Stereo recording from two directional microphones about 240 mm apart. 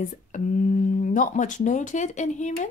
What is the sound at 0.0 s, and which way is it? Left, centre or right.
Speech, left.